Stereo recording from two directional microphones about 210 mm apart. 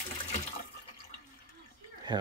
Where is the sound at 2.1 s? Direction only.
20° right (ahead or behind).